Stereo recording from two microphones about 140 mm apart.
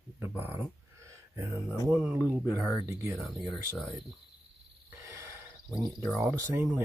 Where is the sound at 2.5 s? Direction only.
20° right (ahead or behind).